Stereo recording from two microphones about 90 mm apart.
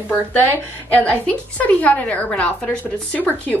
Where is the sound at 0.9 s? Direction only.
20° left (ahead or behind).